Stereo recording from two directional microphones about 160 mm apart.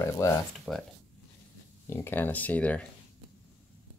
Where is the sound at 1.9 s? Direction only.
10° left (ahead or behind).